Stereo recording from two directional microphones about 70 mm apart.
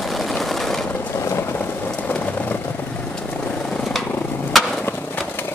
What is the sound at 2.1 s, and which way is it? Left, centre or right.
Vehicle, left.